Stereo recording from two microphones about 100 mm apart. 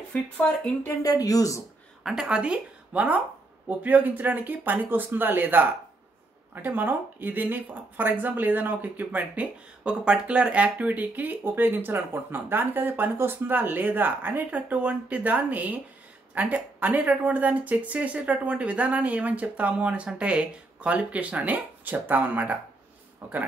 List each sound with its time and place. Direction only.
0.1 s speech: 10° left (ahead or behind)
1.0 s speech: 40° left (ahead or behind)
2.0 s speech: 10° right (ahead or behind)